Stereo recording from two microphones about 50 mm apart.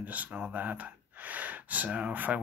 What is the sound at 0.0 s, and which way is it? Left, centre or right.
Speech, right.